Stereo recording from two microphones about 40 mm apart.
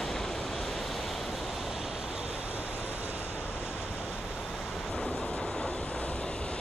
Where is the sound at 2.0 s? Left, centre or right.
Centre.